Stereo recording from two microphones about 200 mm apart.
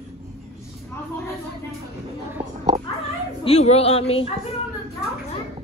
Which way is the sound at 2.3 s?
20° right (ahead or behind).